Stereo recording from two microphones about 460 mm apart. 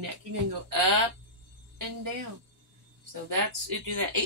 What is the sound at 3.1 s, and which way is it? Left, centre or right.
Speech, right.